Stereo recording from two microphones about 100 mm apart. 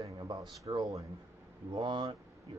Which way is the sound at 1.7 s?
55° right (ahead or behind).